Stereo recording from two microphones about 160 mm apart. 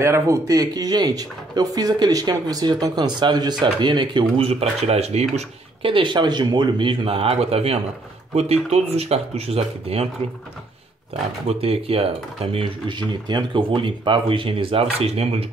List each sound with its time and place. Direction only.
0.0 s speech: 20° right (ahead or behind); by 10.0 s 40° right (ahead or behind)
11.4 s speech: 40° right (ahead or behind)